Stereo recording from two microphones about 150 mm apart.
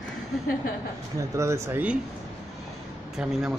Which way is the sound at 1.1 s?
20° right (ahead or behind).